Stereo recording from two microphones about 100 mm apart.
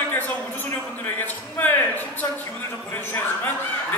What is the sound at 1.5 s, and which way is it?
Speech, 20° left (ahead or behind).